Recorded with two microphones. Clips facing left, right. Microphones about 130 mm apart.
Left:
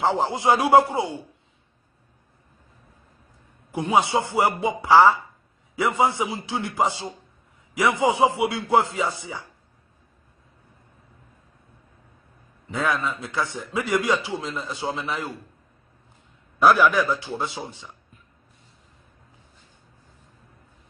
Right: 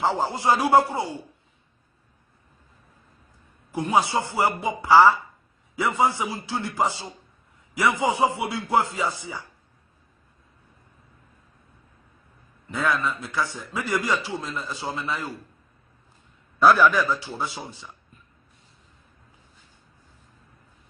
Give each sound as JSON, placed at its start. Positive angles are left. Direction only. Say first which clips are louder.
{"t": 0.0, "sound": "a man's voice", "louder": "left 2 dB", "side_deg": 15}
{"t": 3.7, "sound": "a man's voice", "louder": "left 1 dB", "side_deg": 25}
{"t": 12.6, "sound": "a man's voice", "louder": "even", "side_deg": 20}
{"t": 16.6, "sound": "a man's voice", "louder": "even", "side_deg": 15}